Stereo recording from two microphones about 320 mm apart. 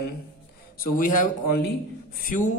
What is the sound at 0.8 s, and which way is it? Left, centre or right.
A man's voice, left.